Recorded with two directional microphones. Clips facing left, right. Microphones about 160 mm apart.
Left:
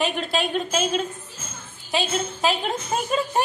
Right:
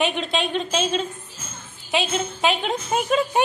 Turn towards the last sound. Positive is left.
turn(degrees=0)  # may be behind; listen again after turning